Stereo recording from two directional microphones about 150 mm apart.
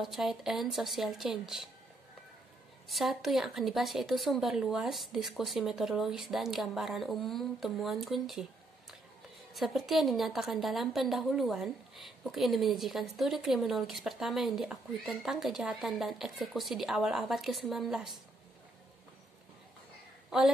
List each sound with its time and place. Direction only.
0.0 s a woman's voice: centre (ahead or behind)
2.9 s a woman's voice: centre (ahead or behind)
9.5 s a woman's voice: centre (ahead or behind)
20.2 s a woman's voice: centre (ahead or behind)